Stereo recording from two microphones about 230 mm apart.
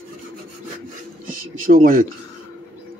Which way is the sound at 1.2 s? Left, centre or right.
Right.